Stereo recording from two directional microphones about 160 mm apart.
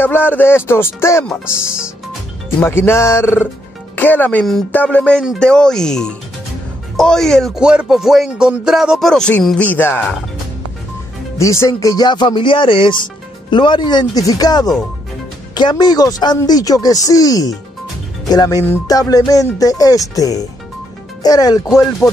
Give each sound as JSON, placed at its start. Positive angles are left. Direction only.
{"t": 0.0, "sound": "music", "side_deg": 10}
{"t": 1.4, "sound": "speech", "side_deg": -5}
{"t": 2.6, "sound": "speech", "side_deg": 15}
{"t": 11.3, "sound": "speech", "side_deg": 20}